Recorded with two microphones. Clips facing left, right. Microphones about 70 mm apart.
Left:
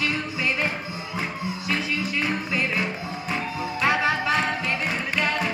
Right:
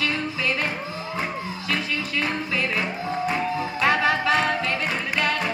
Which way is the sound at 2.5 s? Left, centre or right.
Centre.